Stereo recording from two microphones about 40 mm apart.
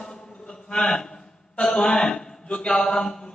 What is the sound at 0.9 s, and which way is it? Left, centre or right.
Speech, centre.